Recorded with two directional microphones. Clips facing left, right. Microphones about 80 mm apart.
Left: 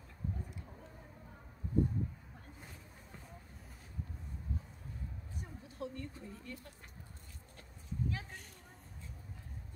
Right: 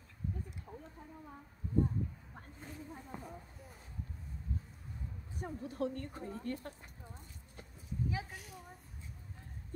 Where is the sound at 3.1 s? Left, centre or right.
Centre.